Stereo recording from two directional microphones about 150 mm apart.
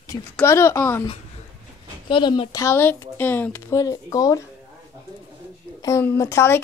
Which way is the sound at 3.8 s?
25° left (ahead or behind).